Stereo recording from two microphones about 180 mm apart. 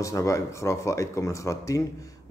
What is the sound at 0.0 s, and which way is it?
A man's voice, 15° left (ahead or behind).